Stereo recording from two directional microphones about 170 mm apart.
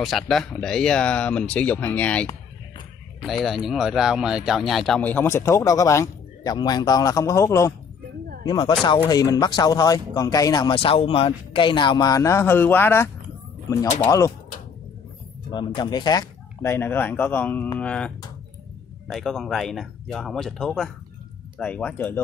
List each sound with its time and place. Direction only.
0.0 s speech: centre (ahead or behind); by 14.0 s 20° left (ahead or behind)
15.5 s speech: 25° left (ahead or behind)